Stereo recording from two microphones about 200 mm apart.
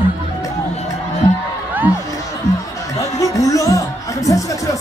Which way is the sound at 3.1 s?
15° left (ahead or behind).